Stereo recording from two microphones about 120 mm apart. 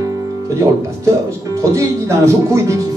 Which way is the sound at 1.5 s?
25° right (ahead or behind).